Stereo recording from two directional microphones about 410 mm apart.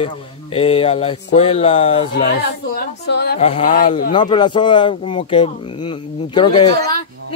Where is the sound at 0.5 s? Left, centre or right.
Centre.